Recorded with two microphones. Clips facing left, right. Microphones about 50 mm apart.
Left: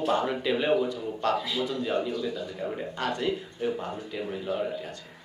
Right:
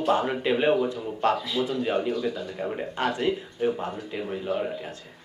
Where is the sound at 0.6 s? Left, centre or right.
Centre.